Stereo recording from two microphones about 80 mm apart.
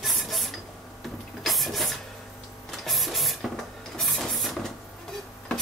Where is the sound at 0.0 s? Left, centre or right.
Centre.